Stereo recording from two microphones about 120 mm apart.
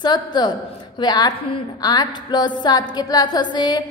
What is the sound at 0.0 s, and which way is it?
A woman's voice, 35° left (ahead or behind).